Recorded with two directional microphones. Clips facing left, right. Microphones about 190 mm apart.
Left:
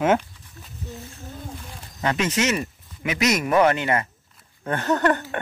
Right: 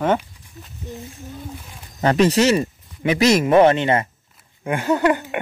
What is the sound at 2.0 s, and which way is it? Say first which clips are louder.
Speech: right 7 dB; 35° right (ahead or behind).